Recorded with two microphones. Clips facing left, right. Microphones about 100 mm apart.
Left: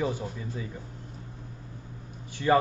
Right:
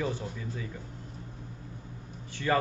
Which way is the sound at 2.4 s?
25° left (ahead or behind).